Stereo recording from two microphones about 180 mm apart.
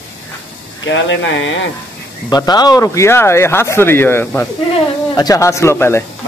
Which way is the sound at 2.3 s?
20° left (ahead or behind).